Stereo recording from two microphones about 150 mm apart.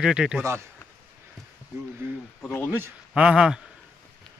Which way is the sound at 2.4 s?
10° left (ahead or behind).